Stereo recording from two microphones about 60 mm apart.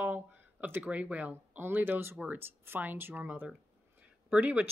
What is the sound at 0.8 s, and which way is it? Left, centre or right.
Speech, right.